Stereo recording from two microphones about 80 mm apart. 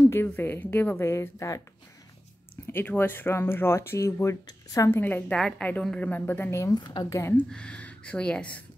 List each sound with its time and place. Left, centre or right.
0.0 s speech: left
2.6 s a woman's voice: left
5.3 s a woman's voice: centre
6.7 s a woman's voice: left
7.1 s speech: left
7.4 s speech: centre